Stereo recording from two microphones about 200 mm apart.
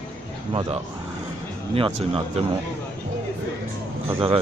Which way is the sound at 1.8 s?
30° right (ahead or behind).